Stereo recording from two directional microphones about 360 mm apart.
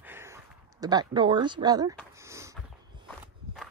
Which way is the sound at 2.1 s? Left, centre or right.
Centre.